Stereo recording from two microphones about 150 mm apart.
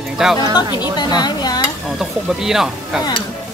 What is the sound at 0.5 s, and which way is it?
Speech, 30° left (ahead or behind).